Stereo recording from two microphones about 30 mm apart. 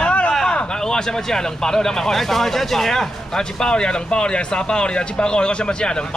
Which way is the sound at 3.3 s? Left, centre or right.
Left.